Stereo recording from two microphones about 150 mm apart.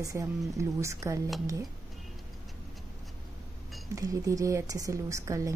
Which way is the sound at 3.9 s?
20° right (ahead or behind).